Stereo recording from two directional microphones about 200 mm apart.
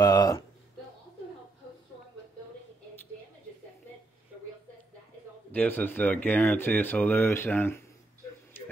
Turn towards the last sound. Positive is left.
turn(degrees=10)  # may be behind; listen again after turning